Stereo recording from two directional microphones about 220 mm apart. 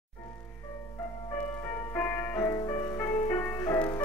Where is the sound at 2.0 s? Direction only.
10° left (ahead or behind).